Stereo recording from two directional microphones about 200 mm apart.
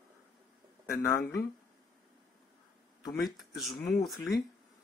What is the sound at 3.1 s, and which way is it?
Speech, centre (ahead or behind).